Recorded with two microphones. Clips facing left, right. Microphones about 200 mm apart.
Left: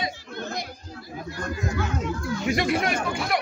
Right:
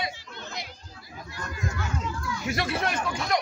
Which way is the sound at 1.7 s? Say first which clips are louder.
Left 5 dB; 60° left (ahead or behind).